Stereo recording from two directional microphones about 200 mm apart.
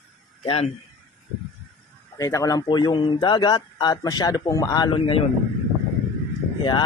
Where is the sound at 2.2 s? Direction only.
15° left (ahead or behind).